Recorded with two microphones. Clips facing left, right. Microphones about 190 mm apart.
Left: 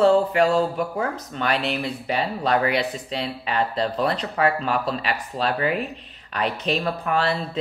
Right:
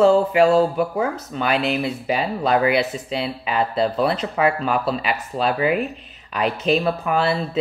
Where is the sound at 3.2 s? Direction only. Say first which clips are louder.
Right 1 dB; 5° right (ahead or behind).